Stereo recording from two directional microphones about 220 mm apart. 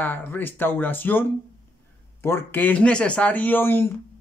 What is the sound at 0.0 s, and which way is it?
Speech, 10° left (ahead or behind).